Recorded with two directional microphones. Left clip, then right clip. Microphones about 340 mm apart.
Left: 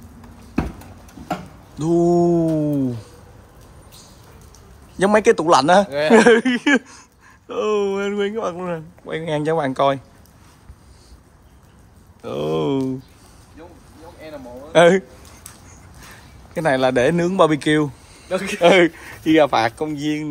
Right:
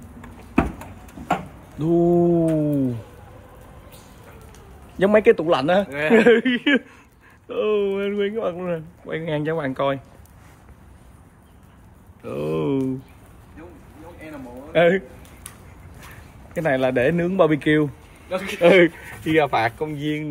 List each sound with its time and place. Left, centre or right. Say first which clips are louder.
1.8 s speech: left 2 dB; centre
4.9 s speech: left 1 dB; centre
5.9 s speech: left 4 dB; left
6.1 s speech: left 2 dB; centre
12.2 s speech: left 3 dB; centre
14.7 s a man's voice: left 5 dB; centre
16.5 s speech: left 3 dB; centre
18.3 s speech: left 3 dB; left
18.6 s speech: left 1 dB; centre